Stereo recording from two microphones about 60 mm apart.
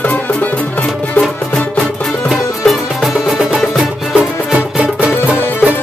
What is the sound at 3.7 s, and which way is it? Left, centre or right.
Music, centre.